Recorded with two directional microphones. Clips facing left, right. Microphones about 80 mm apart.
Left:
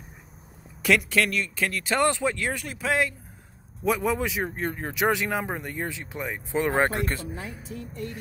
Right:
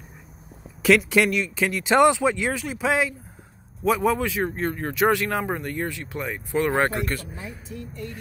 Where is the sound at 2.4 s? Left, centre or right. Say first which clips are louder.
Right 4 dB; centre.